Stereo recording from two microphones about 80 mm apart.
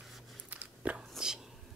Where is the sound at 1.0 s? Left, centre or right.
Centre.